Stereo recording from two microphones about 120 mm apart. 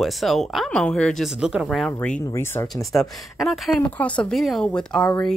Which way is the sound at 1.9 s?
10° left (ahead or behind).